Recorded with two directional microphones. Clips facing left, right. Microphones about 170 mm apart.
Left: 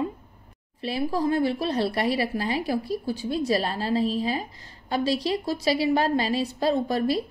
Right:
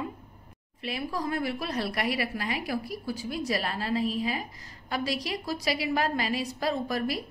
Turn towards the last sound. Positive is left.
turn(degrees=30)  # may be behind; listen again after turning